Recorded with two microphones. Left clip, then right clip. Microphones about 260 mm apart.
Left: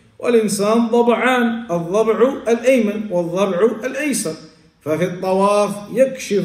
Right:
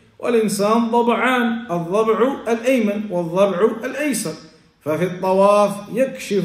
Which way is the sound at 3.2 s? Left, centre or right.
Centre.